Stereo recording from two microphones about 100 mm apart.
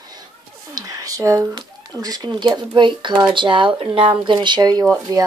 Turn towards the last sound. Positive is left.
turn(degrees=-40)  # may be behind; listen again after turning